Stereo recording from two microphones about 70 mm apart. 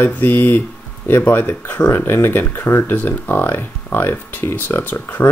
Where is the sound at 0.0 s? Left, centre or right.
Left.